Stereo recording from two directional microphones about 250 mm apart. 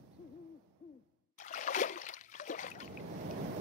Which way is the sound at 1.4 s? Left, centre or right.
Left.